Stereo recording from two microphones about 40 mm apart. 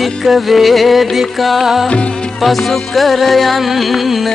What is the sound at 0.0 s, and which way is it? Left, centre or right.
Music, centre.